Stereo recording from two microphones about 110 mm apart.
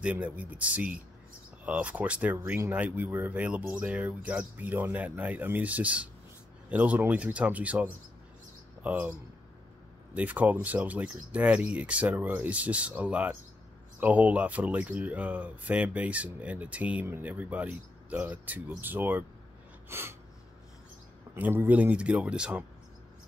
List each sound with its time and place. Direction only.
0.0 s speech: 15° right (ahead or behind)
10.1 s speech: 15° right (ahead or behind)
19.9 s sneeze: 20° right (ahead or behind)
21.4 s speech: 15° right (ahead or behind)